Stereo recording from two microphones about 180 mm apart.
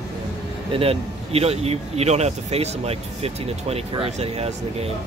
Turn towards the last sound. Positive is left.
turn(degrees=-35)  # may be behind; listen again after turning